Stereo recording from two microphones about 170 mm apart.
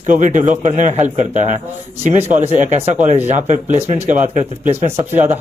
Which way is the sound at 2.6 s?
45° right (ahead or behind).